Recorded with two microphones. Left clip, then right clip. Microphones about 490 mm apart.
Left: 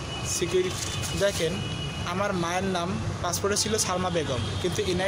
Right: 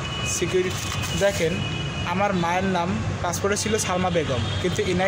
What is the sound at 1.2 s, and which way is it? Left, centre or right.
Speech, left.